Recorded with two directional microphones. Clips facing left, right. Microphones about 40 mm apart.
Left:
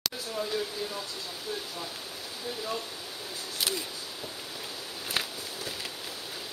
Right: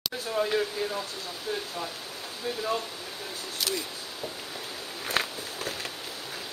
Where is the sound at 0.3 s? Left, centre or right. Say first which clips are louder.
Right 7 dB; right.